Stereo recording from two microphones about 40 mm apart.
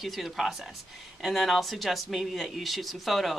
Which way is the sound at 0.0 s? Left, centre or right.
Centre.